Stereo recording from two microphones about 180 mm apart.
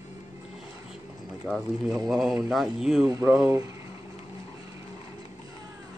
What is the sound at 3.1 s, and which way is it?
Speech, 20° right (ahead or behind).